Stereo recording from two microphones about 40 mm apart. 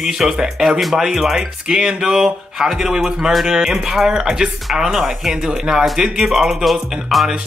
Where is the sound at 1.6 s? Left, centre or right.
Right.